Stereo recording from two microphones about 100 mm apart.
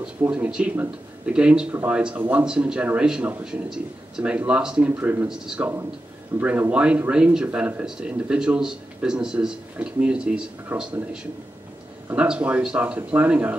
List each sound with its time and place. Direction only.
0.0 s speech: 10° right (ahead or behind)
5.0 s speech: 20° right (ahead or behind)
5.3 s speech: 5° right (ahead or behind)
12.2 s speech: 10° right (ahead or behind)